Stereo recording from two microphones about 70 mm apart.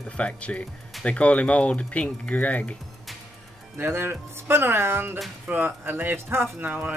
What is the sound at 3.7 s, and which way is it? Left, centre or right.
Speech, right.